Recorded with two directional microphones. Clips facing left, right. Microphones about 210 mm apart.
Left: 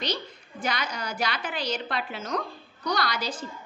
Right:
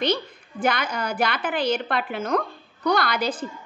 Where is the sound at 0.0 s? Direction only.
55° right (ahead or behind).